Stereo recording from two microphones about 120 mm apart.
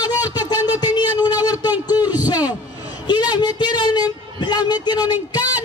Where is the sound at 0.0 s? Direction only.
30° left (ahead or behind).